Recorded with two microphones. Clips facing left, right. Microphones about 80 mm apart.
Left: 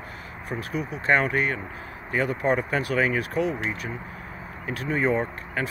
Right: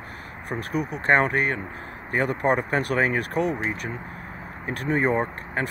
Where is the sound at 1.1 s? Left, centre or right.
Right.